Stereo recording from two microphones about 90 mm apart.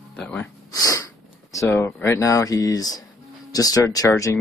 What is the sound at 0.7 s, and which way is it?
Sneeze, 40° left (ahead or behind).